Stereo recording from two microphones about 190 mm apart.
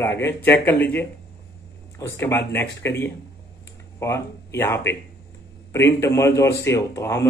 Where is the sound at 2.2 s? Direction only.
15° left (ahead or behind).